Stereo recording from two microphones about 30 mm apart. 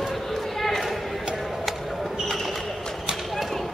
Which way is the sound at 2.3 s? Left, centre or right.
Centre.